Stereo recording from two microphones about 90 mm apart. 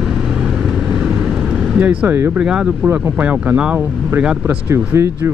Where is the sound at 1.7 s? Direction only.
15° right (ahead or behind).